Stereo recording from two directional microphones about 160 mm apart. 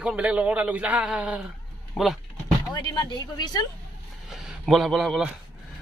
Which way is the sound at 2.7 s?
25° left (ahead or behind).